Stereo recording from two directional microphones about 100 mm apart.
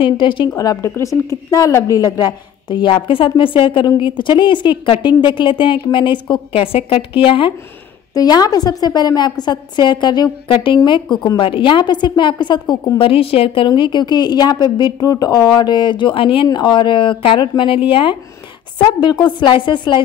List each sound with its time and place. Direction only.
0.0 s a woman's voice: 55° left (ahead or behind)
0.6 s a woman's voice: 35° left (ahead or behind); by 7.5 s 60° left (ahead or behind)
8.1 s a woman's voice: 40° left (ahead or behind)
13.0 s a woman's voice: 70° left (ahead or behind)
13.7 s a woman's voice: 50° left (ahead or behind)
16.4 s a woman's voice: 50° left (ahead or behind)
18.8 s a woman's voice: 50° left (ahead or behind)